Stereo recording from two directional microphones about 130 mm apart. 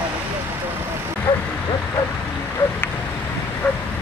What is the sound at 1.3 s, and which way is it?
Speech, 40° left (ahead or behind).